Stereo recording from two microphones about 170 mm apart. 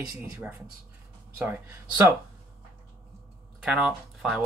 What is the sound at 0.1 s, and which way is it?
Speech, 15° right (ahead or behind).